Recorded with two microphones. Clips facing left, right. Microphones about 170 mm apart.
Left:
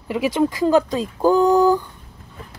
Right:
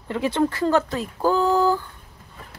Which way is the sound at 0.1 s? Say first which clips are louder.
Left 2 dB; 10° left (ahead or behind).